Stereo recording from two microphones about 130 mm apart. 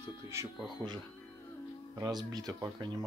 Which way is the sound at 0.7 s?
35° right (ahead or behind).